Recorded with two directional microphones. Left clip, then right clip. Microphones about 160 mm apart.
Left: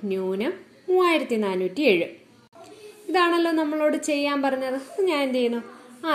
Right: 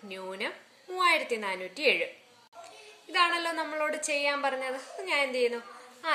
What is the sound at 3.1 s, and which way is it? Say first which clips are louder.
A woman's voice: left 6 dB; 15° left (ahead or behind).